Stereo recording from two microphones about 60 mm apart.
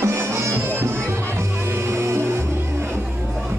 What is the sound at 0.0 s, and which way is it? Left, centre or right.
Music, right.